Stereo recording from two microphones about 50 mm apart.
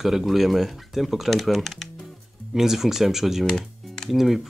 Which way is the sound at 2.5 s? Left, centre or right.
Centre.